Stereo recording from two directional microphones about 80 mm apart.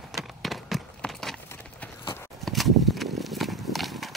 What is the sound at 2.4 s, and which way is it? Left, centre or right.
Horse, centre.